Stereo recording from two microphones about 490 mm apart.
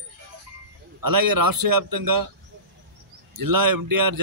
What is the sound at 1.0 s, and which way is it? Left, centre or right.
Speech, right.